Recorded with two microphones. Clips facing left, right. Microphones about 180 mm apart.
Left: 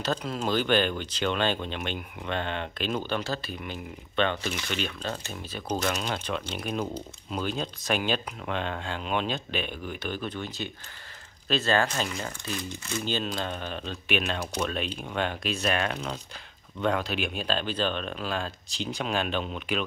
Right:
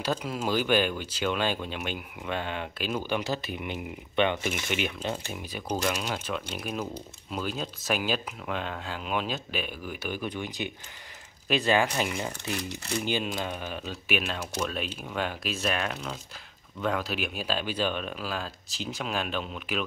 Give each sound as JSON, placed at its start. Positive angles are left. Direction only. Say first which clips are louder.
{"t": 0.0, "sound": "speech", "louder": "even", "side_deg": -10}